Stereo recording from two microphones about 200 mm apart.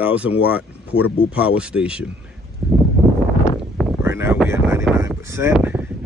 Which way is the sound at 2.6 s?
5° right (ahead or behind).